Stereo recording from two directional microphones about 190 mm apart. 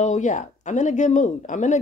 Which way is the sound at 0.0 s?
40° left (ahead or behind).